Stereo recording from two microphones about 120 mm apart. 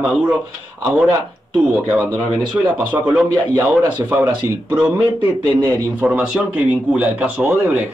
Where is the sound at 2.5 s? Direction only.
20° right (ahead or behind).